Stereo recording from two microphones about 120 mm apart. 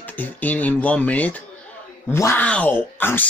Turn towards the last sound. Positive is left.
turn(degrees=15)  # may be behind; listen again after turning